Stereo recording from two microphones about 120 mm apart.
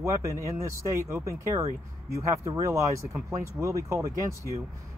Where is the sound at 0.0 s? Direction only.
25° right (ahead or behind).